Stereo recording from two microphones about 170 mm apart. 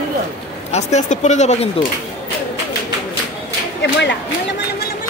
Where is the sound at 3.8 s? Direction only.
90° left.